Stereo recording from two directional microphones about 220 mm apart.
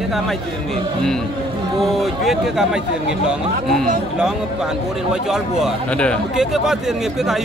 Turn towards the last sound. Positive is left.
turn(degrees=0)  # may be behind; listen again after turning